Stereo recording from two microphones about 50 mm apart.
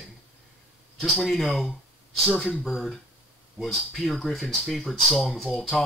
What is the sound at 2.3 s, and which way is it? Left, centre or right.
Speech, left.